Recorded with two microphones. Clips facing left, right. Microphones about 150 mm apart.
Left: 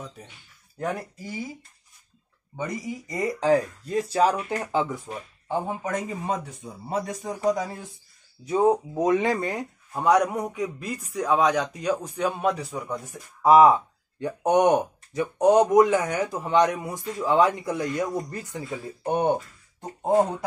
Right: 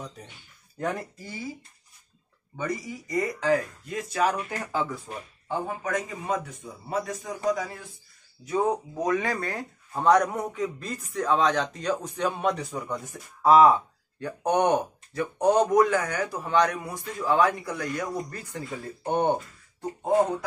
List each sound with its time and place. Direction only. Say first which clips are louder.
0.7 s speech: left 1 dB; 5° left (ahead or behind)
2.5 s speech: left 1 dB; 20° left (ahead or behind); by 13.0 s centre (ahead or behind)
13.1 s speech: left 2 dB; 15° left (ahead or behind)
19.8 s speech: left 1 dB; 25° left (ahead or behind)